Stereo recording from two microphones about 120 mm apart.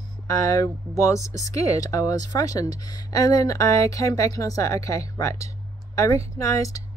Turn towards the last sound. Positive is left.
turn(degrees=25)  # may be behind; listen again after turning